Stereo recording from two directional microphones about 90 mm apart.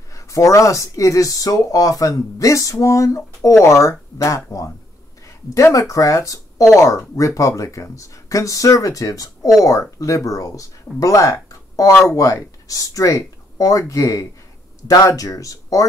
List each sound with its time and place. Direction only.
0.1 s speech: 40° left (ahead or behind)